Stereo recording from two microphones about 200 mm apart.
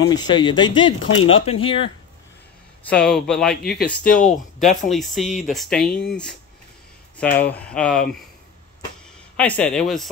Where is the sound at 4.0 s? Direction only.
45° left (ahead or behind).